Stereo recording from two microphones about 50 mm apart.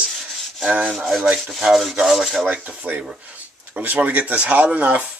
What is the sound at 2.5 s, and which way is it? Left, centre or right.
Speech, right.